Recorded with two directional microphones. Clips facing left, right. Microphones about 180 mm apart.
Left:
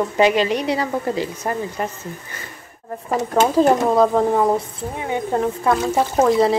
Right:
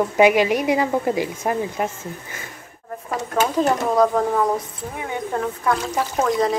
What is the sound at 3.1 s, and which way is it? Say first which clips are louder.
Speech: left 4 dB; 30° left (ahead or behind).